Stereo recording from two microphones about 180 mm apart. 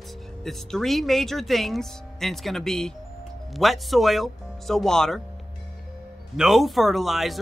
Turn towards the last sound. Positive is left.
turn(degrees=0)  # may be behind; listen again after turning